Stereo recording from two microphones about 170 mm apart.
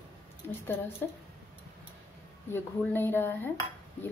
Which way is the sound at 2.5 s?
15° left (ahead or behind).